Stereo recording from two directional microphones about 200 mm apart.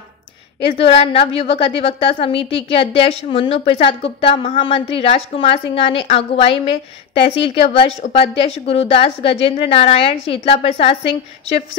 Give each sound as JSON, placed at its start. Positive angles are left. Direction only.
{"t": 0.6, "sound": "a woman's voice", "side_deg": 25}